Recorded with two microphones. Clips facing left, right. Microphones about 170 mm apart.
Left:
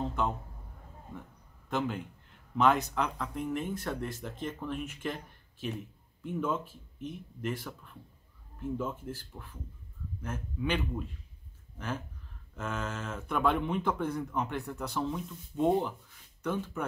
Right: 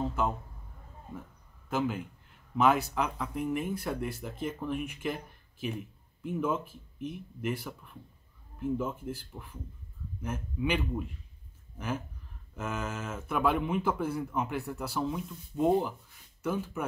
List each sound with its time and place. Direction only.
0.0 s a sound: 5° right (ahead or behind)
1.7 s a man's voice: 5° right (ahead or behind)
12.5 s a man's voice: 10° right (ahead or behind)